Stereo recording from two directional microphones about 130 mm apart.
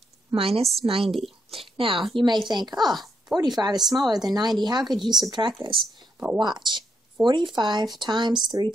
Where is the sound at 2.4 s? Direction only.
35° right (ahead or behind).